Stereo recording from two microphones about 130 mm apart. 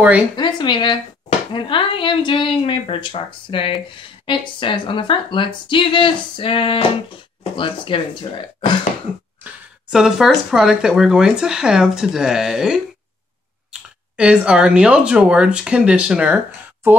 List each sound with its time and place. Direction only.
0.4 s speech: 35° left (ahead or behind)
9.4 s speech: 5° right (ahead or behind)